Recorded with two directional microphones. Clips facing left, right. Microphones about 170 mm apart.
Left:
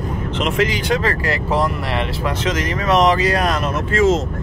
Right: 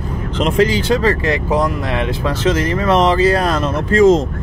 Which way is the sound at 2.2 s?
30° right (ahead or behind).